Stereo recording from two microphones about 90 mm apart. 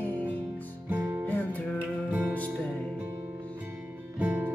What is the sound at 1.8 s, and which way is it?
Music, 20° right (ahead or behind).